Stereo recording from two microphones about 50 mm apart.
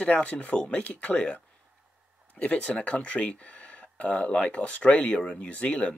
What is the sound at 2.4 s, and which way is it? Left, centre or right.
Speech, left.